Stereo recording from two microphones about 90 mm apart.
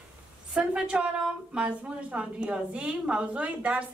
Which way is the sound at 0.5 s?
10° right (ahead or behind).